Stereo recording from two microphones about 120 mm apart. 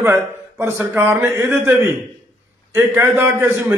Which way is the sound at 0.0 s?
20° right (ahead or behind).